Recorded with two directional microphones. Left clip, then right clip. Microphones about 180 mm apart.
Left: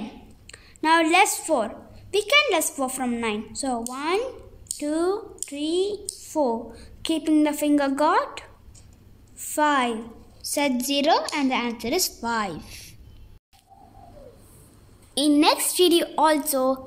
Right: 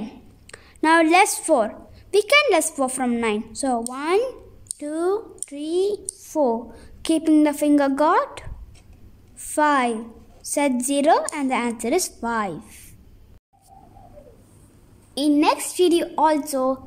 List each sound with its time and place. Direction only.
0.5 s a woman's voice: 30° right (ahead or behind)
15.1 s a woman's voice: 5° right (ahead or behind)